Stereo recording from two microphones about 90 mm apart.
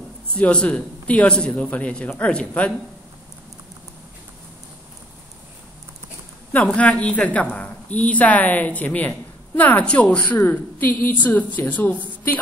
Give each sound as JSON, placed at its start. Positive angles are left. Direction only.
{"t": 0.3, "sound": "a woman's voice", "side_deg": 10}
{"t": 6.5, "sound": "a woman's voice", "side_deg": 15}